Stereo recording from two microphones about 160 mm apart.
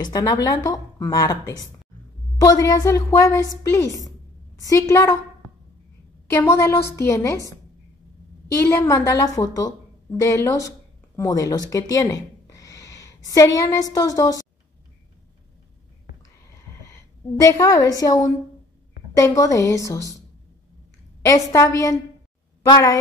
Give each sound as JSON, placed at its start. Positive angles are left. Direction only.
{"t": 0.0, "sound": "speech", "side_deg": 20}
{"t": 6.2, "sound": "a woman's voice", "side_deg": 15}
{"t": 8.5, "sound": "a woman's voice", "side_deg": 15}
{"t": 16.7, "sound": "a sound", "side_deg": 15}
{"t": 17.4, "sound": "speech", "side_deg": 20}
{"t": 21.3, "sound": "speech", "side_deg": 20}